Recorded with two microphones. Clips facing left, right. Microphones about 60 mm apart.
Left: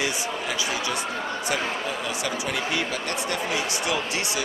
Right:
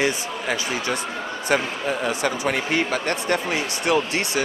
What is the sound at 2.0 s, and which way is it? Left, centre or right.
Speech, right.